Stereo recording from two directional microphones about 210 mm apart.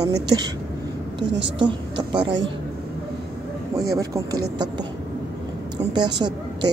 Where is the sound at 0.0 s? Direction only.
20° right (ahead or behind).